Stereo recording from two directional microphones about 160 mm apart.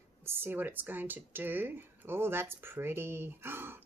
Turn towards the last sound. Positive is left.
turn(degrees=-15)  # may be behind; listen again after turning